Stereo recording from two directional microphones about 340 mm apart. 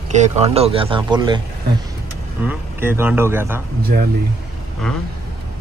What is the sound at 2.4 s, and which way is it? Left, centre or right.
Speech, centre.